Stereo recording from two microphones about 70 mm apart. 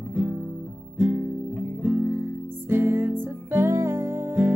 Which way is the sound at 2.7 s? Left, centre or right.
Right.